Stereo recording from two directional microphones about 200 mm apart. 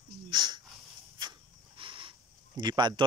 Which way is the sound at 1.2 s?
25° right (ahead or behind).